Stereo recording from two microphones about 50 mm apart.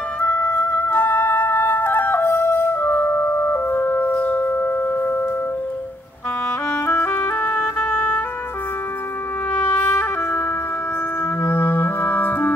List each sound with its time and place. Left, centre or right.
0.2 s music: left
4.2 s a sound: left
6.9 s music: left
9.6 s music: left
9.8 s music: left
11.5 s clarinet: left